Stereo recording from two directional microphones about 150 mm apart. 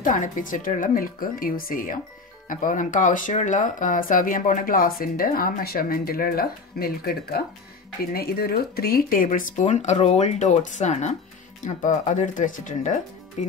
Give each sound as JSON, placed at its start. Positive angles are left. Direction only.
{"t": 0.0, "sound": "speech", "side_deg": 60}
{"t": 13.4, "sound": "speech", "side_deg": 45}